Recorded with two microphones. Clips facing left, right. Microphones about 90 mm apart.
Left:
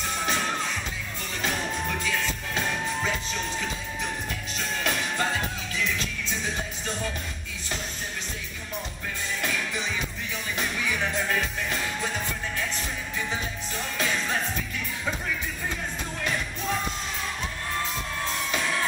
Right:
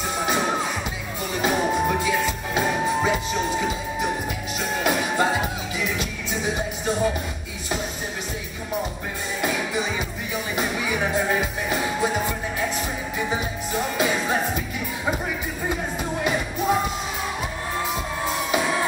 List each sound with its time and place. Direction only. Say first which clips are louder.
0.2 s music: right 6 dB; 15° right (ahead or behind)
9.4 s music: right 7 dB; 15° right (ahead or behind)